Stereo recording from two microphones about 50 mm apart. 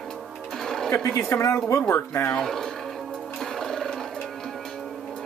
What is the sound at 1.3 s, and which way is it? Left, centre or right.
Speech, left.